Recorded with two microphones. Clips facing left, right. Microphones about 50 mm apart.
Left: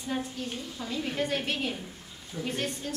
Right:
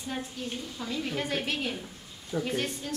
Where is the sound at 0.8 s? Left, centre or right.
Centre.